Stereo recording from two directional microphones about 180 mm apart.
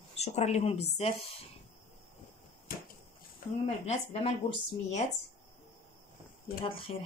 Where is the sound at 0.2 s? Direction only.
35° left (ahead or behind).